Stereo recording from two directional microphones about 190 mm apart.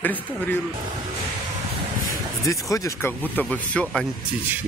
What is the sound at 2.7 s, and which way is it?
Speech, 15° left (ahead or behind).